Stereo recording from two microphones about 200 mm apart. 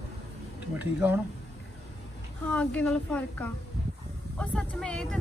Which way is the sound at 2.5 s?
5° left (ahead or behind).